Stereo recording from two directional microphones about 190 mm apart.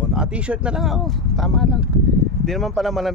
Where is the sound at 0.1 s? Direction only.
5° right (ahead or behind).